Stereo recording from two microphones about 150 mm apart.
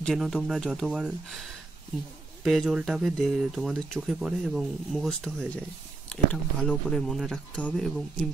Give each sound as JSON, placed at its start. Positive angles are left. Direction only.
{"t": 0.0, "sound": "speech", "side_deg": 0}